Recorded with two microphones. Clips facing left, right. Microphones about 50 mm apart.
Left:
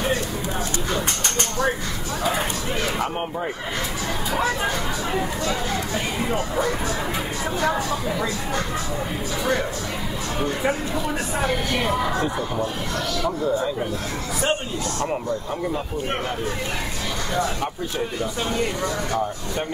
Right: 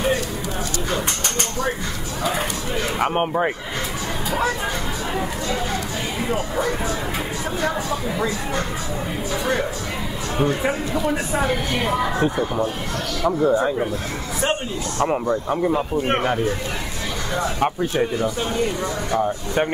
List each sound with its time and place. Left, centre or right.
3.0 s speech: right
6.2 s speech: centre
11.3 s a woman's voice: centre
13.2 s speech: right
15.2 s speech: right